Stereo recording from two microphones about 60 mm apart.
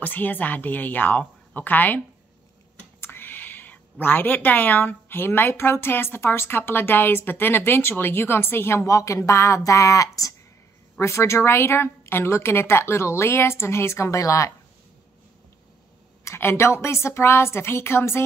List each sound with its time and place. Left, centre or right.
0.0 s a woman's voice: left
3.0 s a woman's voice: left
8.8 s speech: left
11.0 s a woman's voice: left
16.3 s a woman's voice: left